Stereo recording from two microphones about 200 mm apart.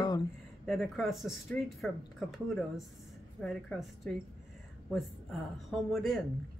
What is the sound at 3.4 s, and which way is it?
Speech, 5° left (ahead or behind).